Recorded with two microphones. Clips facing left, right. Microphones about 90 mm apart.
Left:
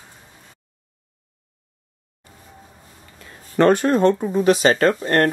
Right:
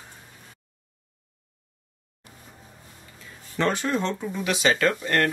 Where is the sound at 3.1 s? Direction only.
55° left (ahead or behind).